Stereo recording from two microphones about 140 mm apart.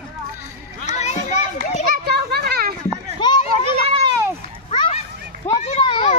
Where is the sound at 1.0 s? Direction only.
55° left (ahead or behind).